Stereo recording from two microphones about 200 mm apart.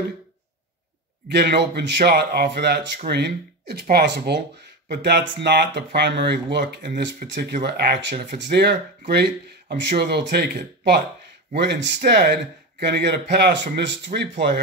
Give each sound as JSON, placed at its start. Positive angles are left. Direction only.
{"t": 1.3, "sound": "speech", "side_deg": -55}